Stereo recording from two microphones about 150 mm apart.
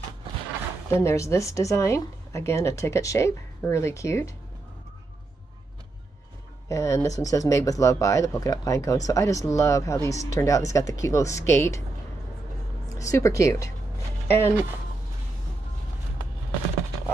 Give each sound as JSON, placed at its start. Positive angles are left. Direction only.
{"t": 0.8, "sound": "speech", "side_deg": 20}
{"t": 6.7, "sound": "speech", "side_deg": 20}
{"t": 12.9, "sound": "speech", "side_deg": 20}